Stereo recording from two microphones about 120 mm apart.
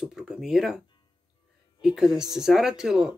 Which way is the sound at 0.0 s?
5° right (ahead or behind).